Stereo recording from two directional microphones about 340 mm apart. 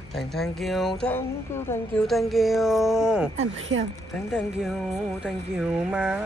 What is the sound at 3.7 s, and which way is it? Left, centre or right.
Speech, right.